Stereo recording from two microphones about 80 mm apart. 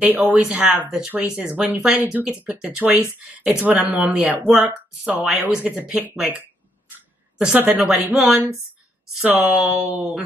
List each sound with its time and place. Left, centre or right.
0.0 s speech: centre
7.3 s speech: centre
7.9 s speech: centre
9.2 s speech: right